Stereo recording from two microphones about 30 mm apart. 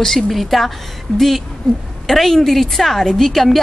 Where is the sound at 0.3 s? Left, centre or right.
Centre.